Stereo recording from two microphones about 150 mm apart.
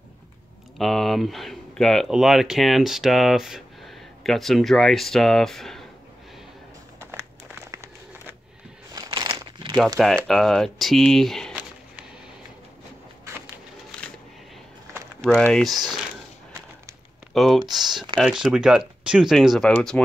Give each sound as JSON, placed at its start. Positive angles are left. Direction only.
{"t": 0.7, "sound": "speech", "side_deg": 0}
{"t": 7.7, "sound": "crumpling", "side_deg": -20}
{"t": 9.9, "sound": "speech", "side_deg": 0}
{"t": 15.2, "sound": "speech", "side_deg": 5}
{"t": 17.3, "sound": "speech", "side_deg": 0}